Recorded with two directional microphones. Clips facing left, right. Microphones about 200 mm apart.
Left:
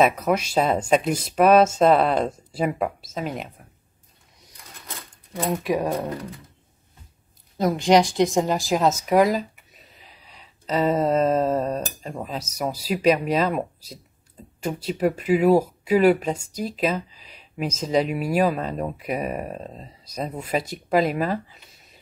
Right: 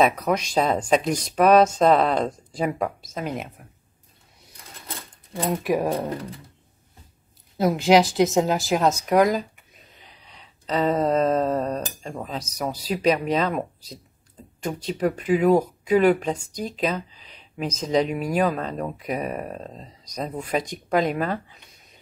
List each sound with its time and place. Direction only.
0.0 s speech: 5° left (ahead or behind)
5.5 s speech: centre (ahead or behind)
7.5 s speech: 5° right (ahead or behind)
9.9 s a sound: 5° left (ahead or behind)
14.6 s speech: 5° left (ahead or behind)